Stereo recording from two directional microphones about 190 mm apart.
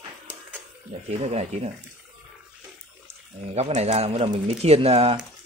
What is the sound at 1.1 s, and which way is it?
Speech, 35° right (ahead or behind).